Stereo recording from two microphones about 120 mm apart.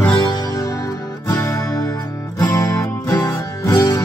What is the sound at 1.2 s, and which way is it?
Music, 25° left (ahead or behind).